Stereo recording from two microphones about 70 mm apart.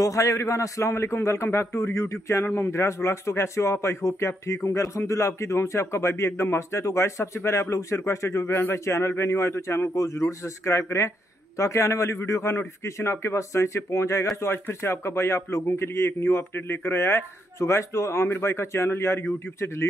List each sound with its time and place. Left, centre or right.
0.0 s a man's voice: left